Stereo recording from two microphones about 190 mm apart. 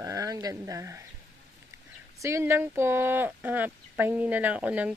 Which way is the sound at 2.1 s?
15° right (ahead or behind).